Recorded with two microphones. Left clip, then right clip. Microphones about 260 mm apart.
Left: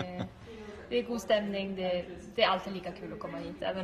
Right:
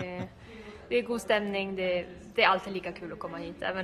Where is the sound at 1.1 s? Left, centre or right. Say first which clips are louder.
Right 1 dB; centre.